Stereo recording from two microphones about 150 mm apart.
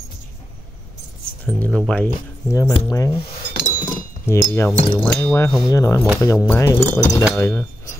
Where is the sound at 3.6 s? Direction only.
15° left (ahead or behind).